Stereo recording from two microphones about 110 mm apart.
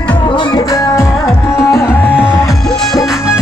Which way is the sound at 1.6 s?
25° left (ahead or behind).